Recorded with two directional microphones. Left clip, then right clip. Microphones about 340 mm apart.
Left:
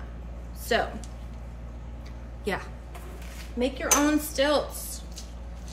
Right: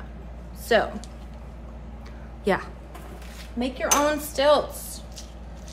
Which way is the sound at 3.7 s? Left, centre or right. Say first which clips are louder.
Right 3 dB; centre.